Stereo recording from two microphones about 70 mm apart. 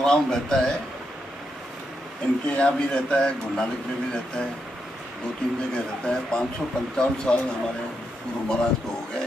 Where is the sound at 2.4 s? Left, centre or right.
Centre.